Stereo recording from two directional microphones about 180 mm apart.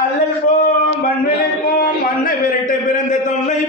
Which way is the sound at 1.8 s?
50° left (ahead or behind).